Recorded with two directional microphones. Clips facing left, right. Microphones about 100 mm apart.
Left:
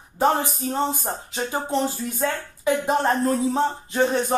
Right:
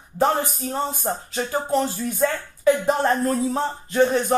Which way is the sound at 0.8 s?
20° left (ahead or behind).